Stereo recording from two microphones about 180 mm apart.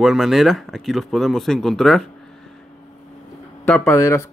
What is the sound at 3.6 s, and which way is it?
Speech, 10° left (ahead or behind).